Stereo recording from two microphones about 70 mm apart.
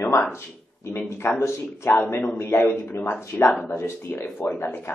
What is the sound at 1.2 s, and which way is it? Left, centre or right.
A man's voice, left.